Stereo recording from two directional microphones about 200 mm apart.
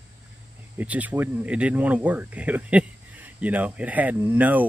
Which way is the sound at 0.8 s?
5° right (ahead or behind).